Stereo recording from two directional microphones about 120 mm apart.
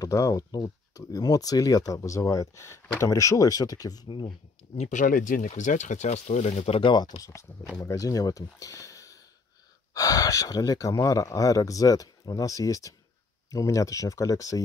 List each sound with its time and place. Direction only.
0.0 s speech: 30° left (ahead or behind)
4.7 s speech: 80° left
6.8 s speech: 40° left (ahead or behind)